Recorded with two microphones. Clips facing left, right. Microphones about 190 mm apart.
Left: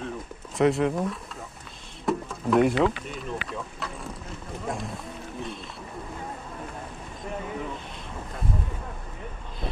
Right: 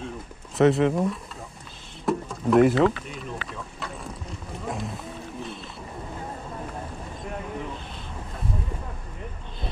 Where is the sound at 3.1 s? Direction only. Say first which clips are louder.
Left 2 dB; centre (ahead or behind).